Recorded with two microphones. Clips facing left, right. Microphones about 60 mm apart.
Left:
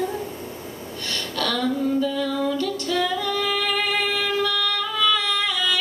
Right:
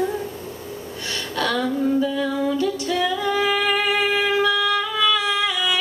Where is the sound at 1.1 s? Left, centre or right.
Centre.